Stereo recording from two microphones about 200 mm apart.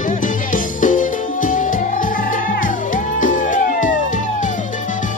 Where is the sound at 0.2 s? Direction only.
40° left (ahead or behind).